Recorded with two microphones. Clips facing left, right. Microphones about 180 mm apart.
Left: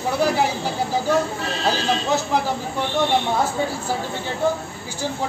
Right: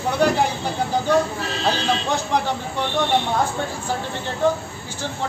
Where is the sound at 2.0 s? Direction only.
5° left (ahead or behind).